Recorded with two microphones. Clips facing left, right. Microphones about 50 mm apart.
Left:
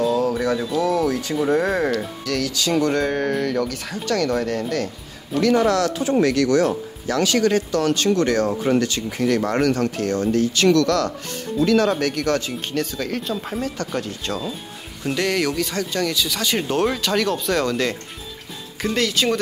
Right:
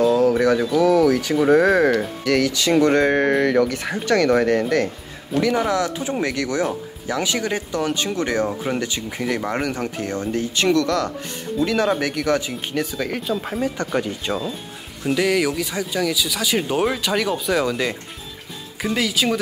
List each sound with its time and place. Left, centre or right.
1.3 s speech: right
1.6 s speech: right
1.9 s speech: right
5.3 s speech: centre
15.0 s speech: centre